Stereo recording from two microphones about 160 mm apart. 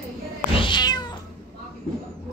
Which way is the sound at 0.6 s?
30° left (ahead or behind).